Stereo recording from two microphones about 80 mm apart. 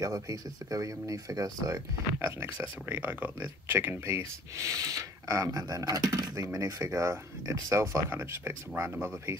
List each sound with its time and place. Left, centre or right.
0.0 s speech: right
2.1 s speech: right
8.1 s speech: right